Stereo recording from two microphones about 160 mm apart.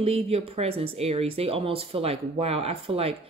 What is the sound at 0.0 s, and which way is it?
Speech, 35° right (ahead or behind).